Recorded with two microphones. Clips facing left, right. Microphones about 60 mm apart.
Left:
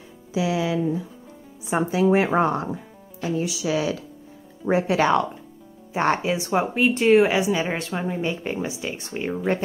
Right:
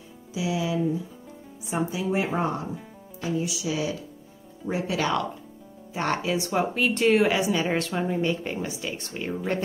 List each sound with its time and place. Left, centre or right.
0.3 s a woman's voice: left
4.6 s speech: left
6.3 s a woman's voice: centre